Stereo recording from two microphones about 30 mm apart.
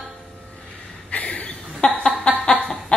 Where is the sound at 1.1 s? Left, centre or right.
Left.